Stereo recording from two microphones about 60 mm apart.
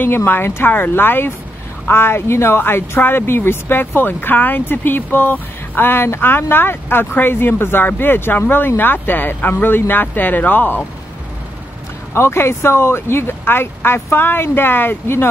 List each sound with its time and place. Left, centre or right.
0.0 s speech: left
12.1 s speech: left